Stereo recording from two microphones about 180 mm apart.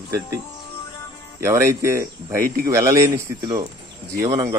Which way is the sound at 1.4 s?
15° right (ahead or behind).